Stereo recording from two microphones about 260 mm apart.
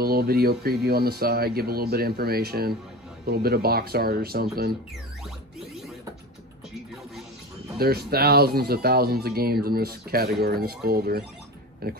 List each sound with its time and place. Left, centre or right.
0.0 s speech: right
7.8 s speech: right